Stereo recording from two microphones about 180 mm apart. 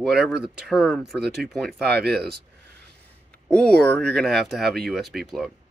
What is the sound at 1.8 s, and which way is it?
Speech, 60° right (ahead or behind).